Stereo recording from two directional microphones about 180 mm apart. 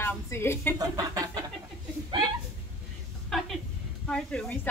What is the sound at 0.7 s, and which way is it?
Chicken, 20° right (ahead or behind).